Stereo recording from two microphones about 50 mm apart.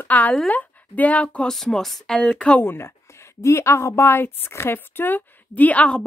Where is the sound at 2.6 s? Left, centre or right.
Left.